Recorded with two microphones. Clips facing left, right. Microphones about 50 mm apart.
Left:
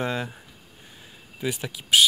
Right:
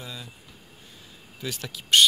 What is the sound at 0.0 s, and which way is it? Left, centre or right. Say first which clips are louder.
Speech: left 12 dB; left.